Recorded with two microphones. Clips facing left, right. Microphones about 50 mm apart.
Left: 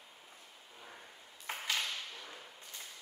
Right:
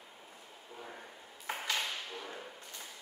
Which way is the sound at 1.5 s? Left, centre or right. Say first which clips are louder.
Right 1 dB; centre.